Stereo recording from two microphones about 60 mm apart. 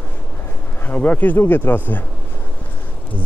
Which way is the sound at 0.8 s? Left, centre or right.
Left.